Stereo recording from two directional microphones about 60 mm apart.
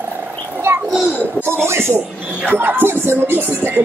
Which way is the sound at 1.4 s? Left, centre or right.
Right.